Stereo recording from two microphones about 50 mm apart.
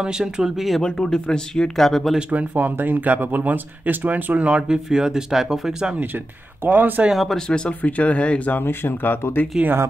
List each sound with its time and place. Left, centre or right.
0.0 s speech: centre
0.8 s speech: centre
2.3 s speech: right; by 5.9 s centre
5.9 s speech: right
7.2 s speech: centre
7.9 s speech: left
8.5 s speech: left